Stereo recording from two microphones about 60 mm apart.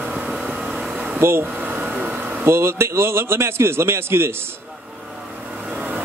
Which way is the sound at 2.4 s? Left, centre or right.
Right.